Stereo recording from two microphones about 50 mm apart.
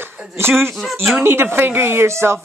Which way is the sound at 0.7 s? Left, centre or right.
Centre.